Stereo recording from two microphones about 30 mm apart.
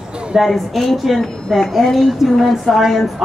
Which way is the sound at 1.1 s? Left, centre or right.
Centre.